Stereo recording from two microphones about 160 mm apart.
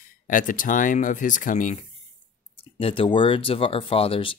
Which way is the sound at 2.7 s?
35° left (ahead or behind).